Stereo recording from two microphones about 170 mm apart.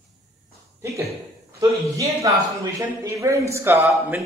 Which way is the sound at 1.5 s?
20° right (ahead or behind).